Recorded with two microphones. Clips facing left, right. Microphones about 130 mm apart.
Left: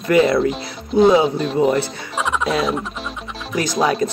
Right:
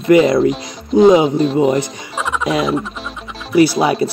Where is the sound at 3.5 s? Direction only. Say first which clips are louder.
Right 7 dB; 10° right (ahead or behind).